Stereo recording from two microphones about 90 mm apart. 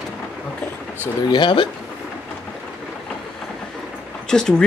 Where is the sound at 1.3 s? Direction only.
60° left (ahead or behind).